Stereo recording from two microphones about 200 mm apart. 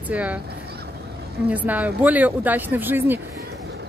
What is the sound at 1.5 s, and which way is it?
Speech, 5° right (ahead or behind).